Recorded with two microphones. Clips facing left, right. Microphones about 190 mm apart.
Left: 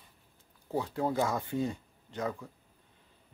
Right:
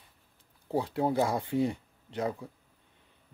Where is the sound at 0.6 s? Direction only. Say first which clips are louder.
Right 3 dB; 30° right (ahead or behind).